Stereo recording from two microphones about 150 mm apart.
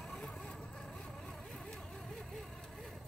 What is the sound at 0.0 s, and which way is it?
Vehicle, 5° left (ahead or behind).